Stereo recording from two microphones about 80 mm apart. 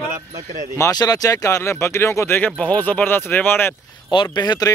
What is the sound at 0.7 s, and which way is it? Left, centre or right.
Speech, left.